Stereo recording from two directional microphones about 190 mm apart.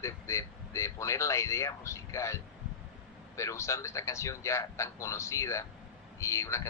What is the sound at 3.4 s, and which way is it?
Speech, 15° left (ahead or behind).